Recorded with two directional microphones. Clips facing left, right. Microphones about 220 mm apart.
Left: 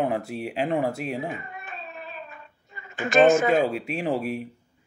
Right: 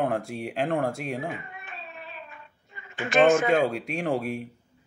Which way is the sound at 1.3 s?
40° left (ahead or behind).